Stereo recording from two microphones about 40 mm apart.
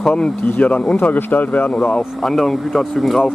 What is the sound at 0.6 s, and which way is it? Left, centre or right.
Speech, left.